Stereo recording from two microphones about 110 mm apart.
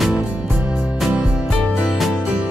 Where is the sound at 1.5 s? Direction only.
5° left (ahead or behind); by 2.5 s 10° right (ahead or behind).